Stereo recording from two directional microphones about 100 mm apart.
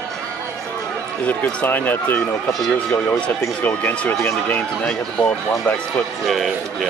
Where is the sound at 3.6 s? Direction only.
15° left (ahead or behind).